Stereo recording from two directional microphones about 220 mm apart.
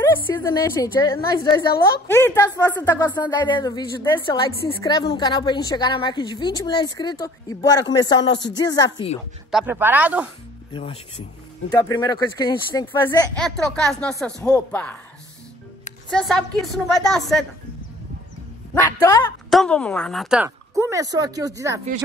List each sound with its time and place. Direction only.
0.0 s a woman's voice: 15° left (ahead or behind)
9.5 s speech: 5° right (ahead or behind)
10.7 s a woman's voice: 25° left (ahead or behind)
13.4 s speech: 5° left (ahead or behind)
16.1 s speech: centre (ahead or behind)
19.0 s a woman's voice: 15° left (ahead or behind)
19.5 s speech: 5° left (ahead or behind); by 21.8 s 15° right (ahead or behind)